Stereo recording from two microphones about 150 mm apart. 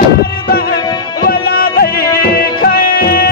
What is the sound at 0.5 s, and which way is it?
Music, 90° left.